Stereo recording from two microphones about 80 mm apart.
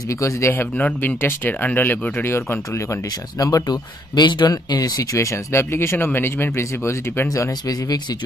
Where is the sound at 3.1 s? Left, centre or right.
Left.